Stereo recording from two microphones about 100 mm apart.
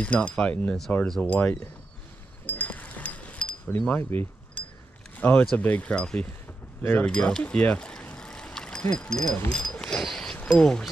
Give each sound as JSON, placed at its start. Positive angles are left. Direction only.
{"t": 0.0, "sound": "speech", "side_deg": 15}
{"t": 2.4, "sound": "a sound", "side_deg": 15}
{"t": 5.1, "sound": "speech", "side_deg": 15}
{"t": 6.8, "sound": "speech", "side_deg": 20}
{"t": 7.1, "sound": "vehicle", "side_deg": 10}
{"t": 8.9, "sound": "speech", "side_deg": 5}
{"t": 9.5, "sound": "a sound", "side_deg": 5}